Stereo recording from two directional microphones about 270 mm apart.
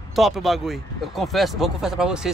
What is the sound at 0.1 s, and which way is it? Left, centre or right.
Speech, centre.